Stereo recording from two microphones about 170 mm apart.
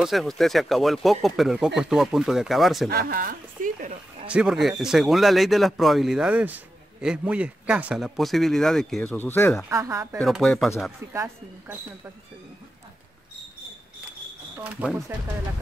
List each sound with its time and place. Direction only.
0.0 s a man's voice: centre (ahead or behind)
2.9 s speech: 65° right (ahead or behind)
4.3 s a man's voice: 5° right (ahead or behind); by 9.5 s 10° left (ahead or behind)
9.7 s speech: 20° right (ahead or behind)
10.2 s a man's voice: centre (ahead or behind)
11.1 s speech: 15° right (ahead or behind)
14.6 s a man's voice: 5° right (ahead or behind)